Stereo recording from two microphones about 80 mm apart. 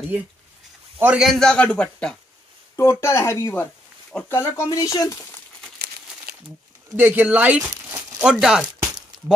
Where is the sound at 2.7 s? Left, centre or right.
Left.